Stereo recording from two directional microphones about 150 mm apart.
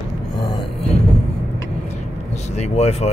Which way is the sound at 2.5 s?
45° left (ahead or behind).